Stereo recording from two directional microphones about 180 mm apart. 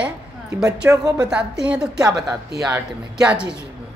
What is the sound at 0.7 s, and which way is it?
Speech, 20° right (ahead or behind).